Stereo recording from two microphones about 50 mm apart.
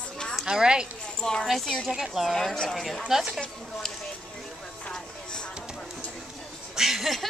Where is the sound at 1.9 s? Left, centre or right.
Centre.